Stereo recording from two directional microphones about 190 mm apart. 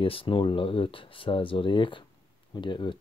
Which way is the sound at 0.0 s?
30° left (ahead or behind).